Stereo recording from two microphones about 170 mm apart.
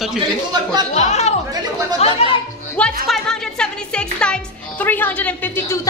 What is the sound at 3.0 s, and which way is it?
Speech, centre (ahead or behind).